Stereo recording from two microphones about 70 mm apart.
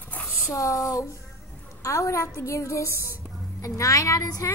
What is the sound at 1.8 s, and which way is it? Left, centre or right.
A woman's voice, left.